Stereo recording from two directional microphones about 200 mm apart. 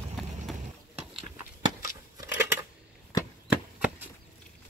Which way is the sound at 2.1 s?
10° right (ahead or behind).